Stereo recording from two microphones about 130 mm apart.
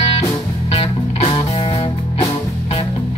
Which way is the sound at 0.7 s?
50° left (ahead or behind).